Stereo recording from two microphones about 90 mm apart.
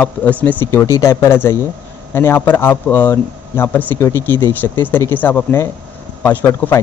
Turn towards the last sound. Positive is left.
turn(degrees=25)  # may be behind; listen again after turning